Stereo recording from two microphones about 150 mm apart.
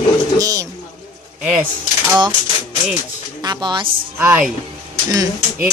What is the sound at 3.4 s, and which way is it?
Speech, 30° right (ahead or behind).